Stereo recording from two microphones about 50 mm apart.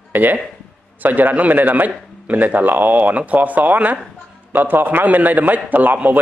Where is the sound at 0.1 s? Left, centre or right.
Right.